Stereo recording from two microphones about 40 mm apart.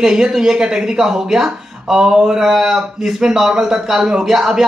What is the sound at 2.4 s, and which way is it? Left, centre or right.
Speech, centre.